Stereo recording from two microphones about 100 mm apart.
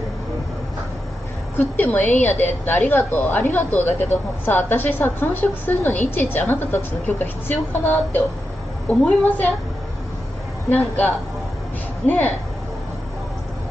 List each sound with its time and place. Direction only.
1.6 s a woman's voice: 15° left (ahead or behind)
10.7 s a woman's voice: 15° left (ahead or behind)